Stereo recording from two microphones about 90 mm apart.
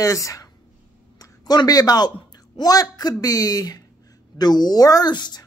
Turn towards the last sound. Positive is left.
turn(degrees=50)  # may be behind; listen again after turning